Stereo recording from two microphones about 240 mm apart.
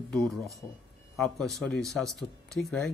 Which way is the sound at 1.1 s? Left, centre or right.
Centre.